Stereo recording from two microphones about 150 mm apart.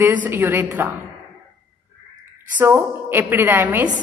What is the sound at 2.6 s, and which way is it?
A woman's voice, 15° right (ahead or behind).